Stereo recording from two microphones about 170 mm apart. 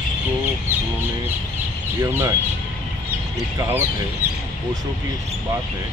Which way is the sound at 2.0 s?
15° right (ahead or behind).